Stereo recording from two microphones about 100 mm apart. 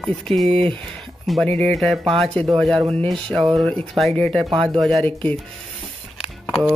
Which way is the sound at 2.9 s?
5° left (ahead or behind).